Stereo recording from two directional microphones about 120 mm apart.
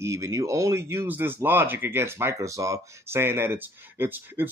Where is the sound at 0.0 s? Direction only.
25° right (ahead or behind).